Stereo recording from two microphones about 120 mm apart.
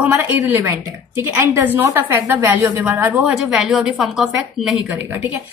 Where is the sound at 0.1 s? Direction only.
20° right (ahead or behind).